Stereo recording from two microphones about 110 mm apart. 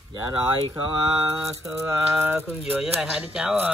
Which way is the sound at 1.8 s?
20° right (ahead or behind).